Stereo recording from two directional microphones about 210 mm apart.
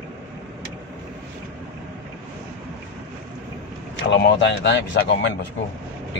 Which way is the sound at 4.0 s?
55° left (ahead or behind).